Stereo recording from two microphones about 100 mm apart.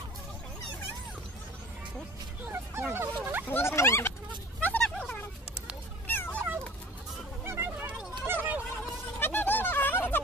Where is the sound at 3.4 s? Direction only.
25° left (ahead or behind).